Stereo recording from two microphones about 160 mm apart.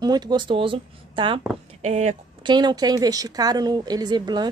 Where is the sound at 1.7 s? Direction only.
45° right (ahead or behind).